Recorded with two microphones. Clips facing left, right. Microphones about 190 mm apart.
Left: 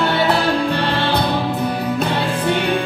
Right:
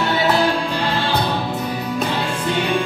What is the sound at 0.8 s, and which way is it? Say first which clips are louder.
Music: left 2 dB; 60° left (ahead or behind).